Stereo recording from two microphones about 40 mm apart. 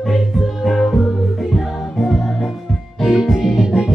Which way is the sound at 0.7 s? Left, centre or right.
Centre.